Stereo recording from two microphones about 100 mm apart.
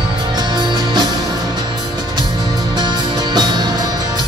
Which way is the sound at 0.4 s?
45° right (ahead or behind).